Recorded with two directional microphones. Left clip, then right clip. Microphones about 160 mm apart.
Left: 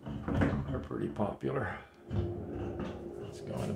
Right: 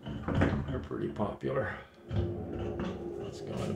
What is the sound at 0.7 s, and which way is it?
Speech, 10° left (ahead or behind).